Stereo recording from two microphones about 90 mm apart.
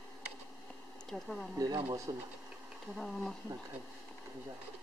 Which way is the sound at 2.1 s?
55° right (ahead or behind).